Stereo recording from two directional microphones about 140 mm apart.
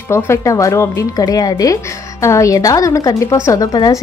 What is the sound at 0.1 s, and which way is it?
A woman's voice, 20° left (ahead or behind).